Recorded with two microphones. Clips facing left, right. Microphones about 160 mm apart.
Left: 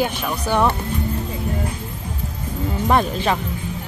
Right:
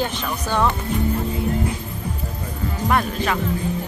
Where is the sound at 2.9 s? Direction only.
25° left (ahead or behind).